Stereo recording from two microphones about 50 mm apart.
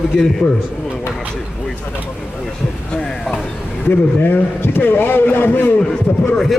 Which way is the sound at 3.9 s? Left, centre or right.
Left.